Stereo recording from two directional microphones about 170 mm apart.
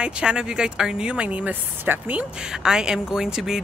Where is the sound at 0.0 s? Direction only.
5° right (ahead or behind).